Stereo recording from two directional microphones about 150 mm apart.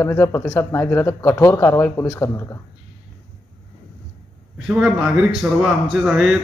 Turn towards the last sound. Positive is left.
turn(degrees=-5)  # may be behind; listen again after turning